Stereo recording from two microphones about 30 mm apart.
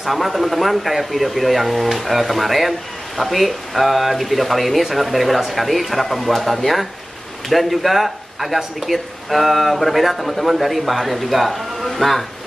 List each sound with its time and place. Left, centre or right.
0.0 s speech: centre